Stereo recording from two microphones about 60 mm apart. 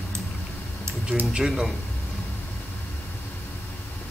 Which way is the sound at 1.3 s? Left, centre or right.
Centre.